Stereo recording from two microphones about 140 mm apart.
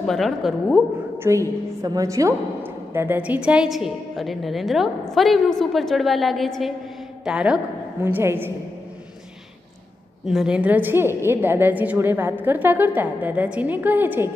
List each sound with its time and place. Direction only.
0.0 s a woman's voice: centre (ahead or behind)
1.1 s a sound: 15° right (ahead or behind)
1.8 s a woman's voice: 25° right (ahead or behind)
10.2 s a woman's voice: 5° right (ahead or behind)